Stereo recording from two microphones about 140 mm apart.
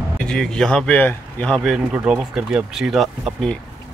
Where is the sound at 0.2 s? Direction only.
5° left (ahead or behind).